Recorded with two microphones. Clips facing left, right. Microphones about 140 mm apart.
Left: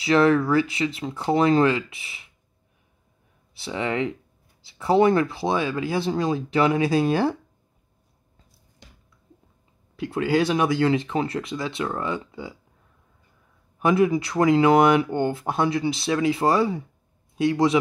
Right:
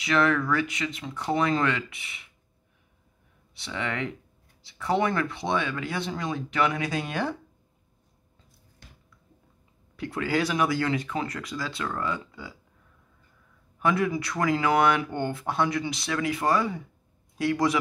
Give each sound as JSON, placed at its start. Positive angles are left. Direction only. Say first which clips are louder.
{"t": 0.0, "sound": "speech", "louder": "left 6 dB", "side_deg": 30}
{"t": 3.5, "sound": "speech", "louder": "left 6 dB", "side_deg": 30}
{"t": 9.9, "sound": "speech", "louder": "left 5 dB", "side_deg": 25}
{"t": 13.7, "sound": "speech", "louder": "left 6 dB", "side_deg": 20}